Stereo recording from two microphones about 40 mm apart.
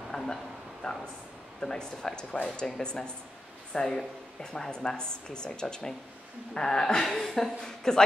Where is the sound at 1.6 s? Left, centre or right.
Centre.